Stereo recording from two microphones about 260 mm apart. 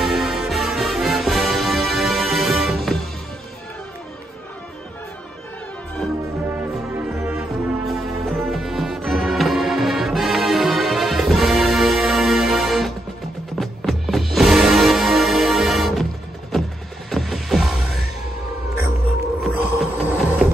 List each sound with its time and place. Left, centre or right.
0.0 s music: centre
6.5 s music: centre
17.1 s music: centre
19.4 s music: centre